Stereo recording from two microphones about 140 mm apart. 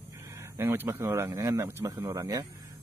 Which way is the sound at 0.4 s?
15° right (ahead or behind).